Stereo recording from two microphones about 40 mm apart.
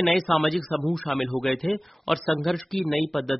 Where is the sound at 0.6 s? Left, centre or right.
Left.